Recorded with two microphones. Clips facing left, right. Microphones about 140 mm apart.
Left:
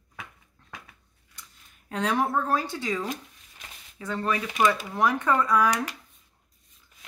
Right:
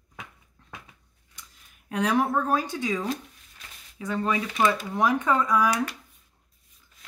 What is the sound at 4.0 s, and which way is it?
Speech, 15° right (ahead or behind).